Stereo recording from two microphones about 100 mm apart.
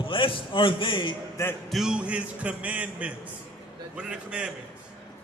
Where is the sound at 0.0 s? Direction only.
60° left (ahead or behind).